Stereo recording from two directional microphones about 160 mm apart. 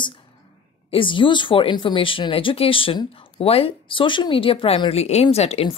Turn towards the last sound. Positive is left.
turn(degrees=40)  # may be behind; listen again after turning